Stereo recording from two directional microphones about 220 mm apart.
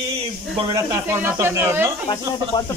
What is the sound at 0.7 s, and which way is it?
Speech, 10° right (ahead or behind).